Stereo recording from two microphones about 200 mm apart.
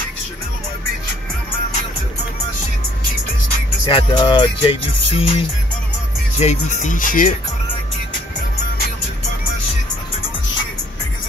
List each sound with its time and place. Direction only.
3.8 s speech: 25° left (ahead or behind); by 7.3 s 40° left (ahead or behind)